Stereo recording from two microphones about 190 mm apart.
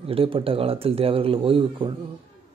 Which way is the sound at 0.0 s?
30° right (ahead or behind).